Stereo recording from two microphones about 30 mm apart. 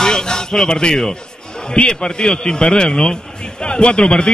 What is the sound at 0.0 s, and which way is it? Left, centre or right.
Music, left.